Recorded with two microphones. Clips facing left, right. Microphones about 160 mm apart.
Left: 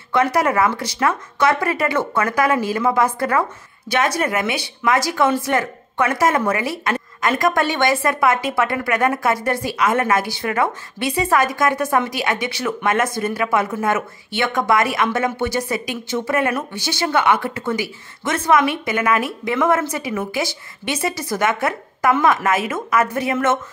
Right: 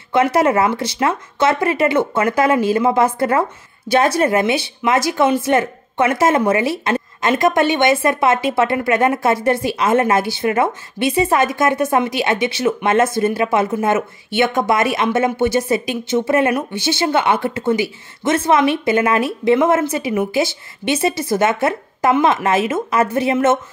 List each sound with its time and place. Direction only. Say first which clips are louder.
0.1 s speech: right 3 dB; 25° right (ahead or behind)